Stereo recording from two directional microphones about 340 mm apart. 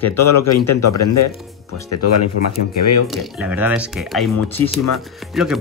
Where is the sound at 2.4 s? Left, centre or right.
Left.